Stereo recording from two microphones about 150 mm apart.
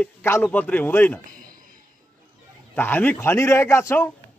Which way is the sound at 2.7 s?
10° left (ahead or behind).